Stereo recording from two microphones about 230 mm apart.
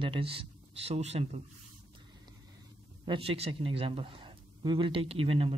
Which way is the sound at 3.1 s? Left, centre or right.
Right.